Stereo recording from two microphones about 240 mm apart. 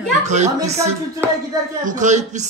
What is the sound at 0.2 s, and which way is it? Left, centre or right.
A woman's voice, right.